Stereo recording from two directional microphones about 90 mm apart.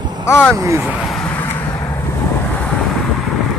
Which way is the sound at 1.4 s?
20° left (ahead or behind).